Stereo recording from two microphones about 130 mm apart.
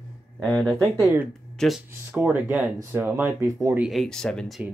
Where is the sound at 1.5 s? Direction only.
Centre (ahead or behind).